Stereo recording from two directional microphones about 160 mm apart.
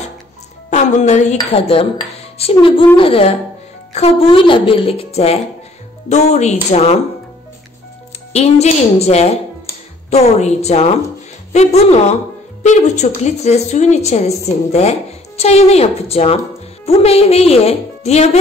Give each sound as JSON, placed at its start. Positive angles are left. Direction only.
{"t": 0.7, "sound": "speech", "side_deg": 45}
{"t": 1.4, "sound": "a woman's voice", "side_deg": 35}
{"t": 8.3, "sound": "a woman's voice", "side_deg": 40}